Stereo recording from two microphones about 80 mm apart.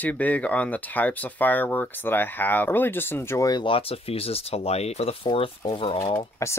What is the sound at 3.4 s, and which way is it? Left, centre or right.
Speech, left.